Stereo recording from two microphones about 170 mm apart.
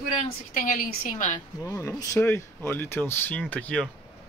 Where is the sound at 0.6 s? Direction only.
55° left (ahead or behind).